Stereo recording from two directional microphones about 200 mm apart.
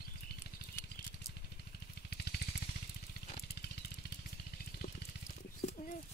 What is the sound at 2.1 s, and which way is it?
Vehicle, 55° left (ahead or behind).